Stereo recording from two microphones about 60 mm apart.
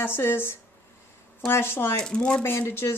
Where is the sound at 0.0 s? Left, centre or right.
Left.